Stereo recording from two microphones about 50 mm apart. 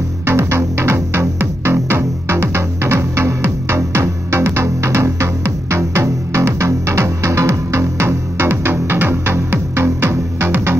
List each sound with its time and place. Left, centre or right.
0.2 s music: right